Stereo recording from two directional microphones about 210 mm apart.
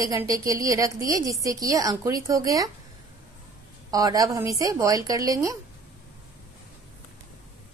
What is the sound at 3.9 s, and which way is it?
A woman's voice, 20° right (ahead or behind).